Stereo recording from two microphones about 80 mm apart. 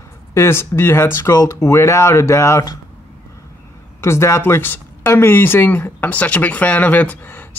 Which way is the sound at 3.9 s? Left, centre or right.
Left.